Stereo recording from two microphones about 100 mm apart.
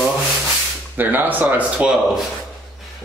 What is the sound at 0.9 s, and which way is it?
Speech, 15° right (ahead or behind).